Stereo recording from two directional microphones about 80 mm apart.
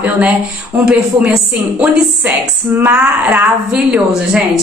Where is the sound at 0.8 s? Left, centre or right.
Centre.